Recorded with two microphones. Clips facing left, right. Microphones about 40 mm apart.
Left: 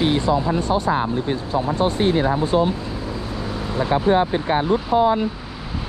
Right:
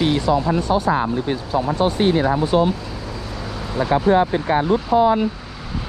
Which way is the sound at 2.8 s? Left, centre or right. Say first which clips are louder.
Left 2 dB; left.